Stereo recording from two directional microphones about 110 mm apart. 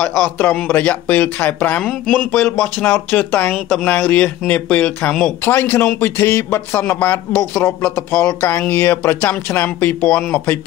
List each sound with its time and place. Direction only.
0.0 s speech: 10° left (ahead or behind)
5.4 s a man's voice: 20° left (ahead or behind)